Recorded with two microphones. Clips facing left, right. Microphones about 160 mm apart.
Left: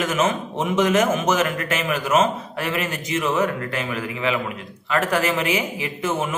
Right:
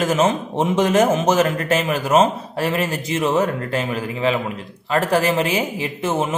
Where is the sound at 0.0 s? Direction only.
30° right (ahead or behind).